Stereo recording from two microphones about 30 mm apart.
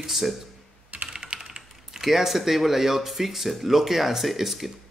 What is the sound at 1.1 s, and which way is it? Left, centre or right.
Typing, right.